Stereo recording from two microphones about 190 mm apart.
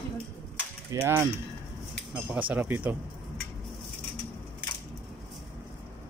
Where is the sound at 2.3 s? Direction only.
10° right (ahead or behind).